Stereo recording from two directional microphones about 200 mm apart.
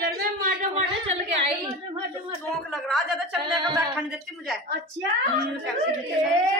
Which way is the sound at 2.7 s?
Centre (ahead or behind).